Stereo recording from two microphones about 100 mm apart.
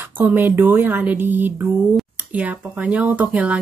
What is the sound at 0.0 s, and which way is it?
Speech, 20° right (ahead or behind).